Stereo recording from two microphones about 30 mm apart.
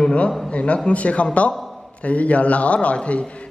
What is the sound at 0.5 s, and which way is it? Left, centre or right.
A man's voice, left.